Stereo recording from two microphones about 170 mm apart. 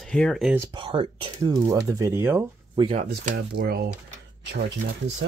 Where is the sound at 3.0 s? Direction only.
65° right (ahead or behind).